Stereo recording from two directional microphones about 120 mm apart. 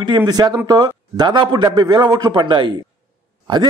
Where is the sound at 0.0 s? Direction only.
35° right (ahead or behind).